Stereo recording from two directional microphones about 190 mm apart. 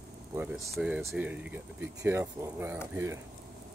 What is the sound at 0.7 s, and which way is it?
Speech, centre (ahead or behind).